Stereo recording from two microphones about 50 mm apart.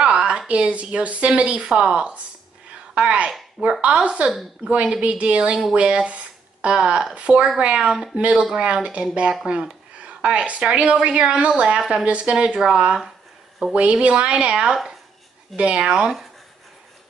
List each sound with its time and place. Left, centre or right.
0.0 s a sound: right
0.5 s speech: right
12.5 s speech: centre
13.7 s speech: right